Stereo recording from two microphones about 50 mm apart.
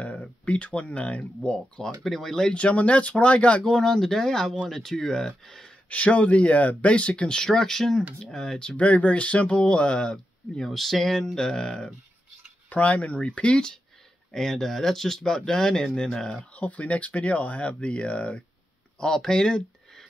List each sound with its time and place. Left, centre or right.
0.5 s speech: left
2.0 s speech: centre
2.5 s speech: left
3.7 s speech: centre
5.9 s speech: left
8.7 s speech: left
12.6 s speech: left
16.5 s speech: left
18.9 s speech: centre